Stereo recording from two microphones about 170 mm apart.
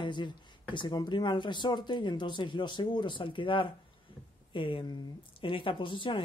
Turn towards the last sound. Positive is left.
turn(degrees=30)  # may be behind; listen again after turning